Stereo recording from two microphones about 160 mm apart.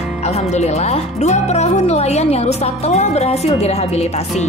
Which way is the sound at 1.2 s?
45° left (ahead or behind).